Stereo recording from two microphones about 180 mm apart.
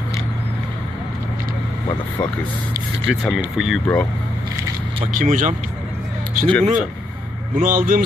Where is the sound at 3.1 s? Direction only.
5° right (ahead or behind).